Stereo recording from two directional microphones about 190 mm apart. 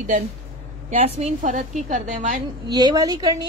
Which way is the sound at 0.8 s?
35° right (ahead or behind).